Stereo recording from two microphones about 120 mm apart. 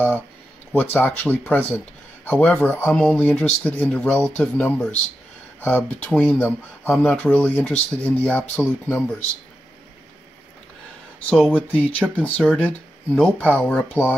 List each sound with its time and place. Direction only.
0.7 s speech: 15° left (ahead or behind)
11.2 s speech: 5° left (ahead or behind)